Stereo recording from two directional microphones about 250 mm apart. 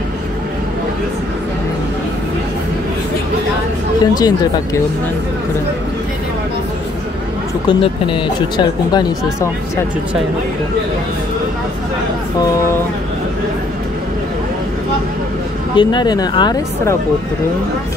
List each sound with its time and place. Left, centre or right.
4.0 s speech: centre
7.6 s speech: centre
15.7 s speech: centre